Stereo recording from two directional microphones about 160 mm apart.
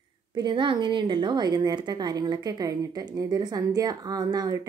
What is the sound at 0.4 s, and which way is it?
A woman's voice, 30° right (ahead or behind).